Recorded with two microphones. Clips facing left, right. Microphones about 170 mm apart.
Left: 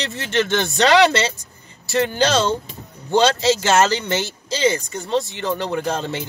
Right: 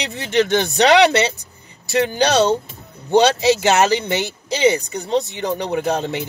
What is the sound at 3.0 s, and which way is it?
Speech, 15° right (ahead or behind).